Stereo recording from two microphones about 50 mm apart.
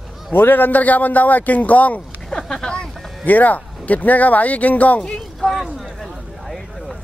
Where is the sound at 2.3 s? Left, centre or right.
Centre.